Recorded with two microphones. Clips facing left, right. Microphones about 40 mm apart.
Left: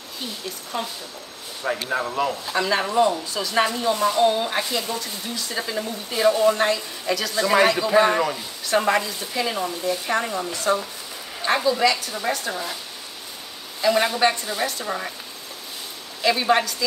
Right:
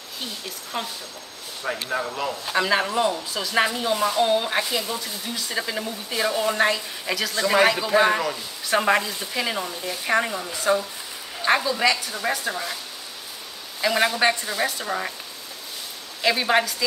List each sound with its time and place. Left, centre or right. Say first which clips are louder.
0.8 s speech: left 1 dB; centre
1.6 s a man's voice: left 2 dB; centre
2.4 s speech: right 1 dB; centre
7.2 s a man's voice: left 1 dB; centre
13.7 s speech: left 1 dB; centre
16.2 s speech: left 1 dB; centre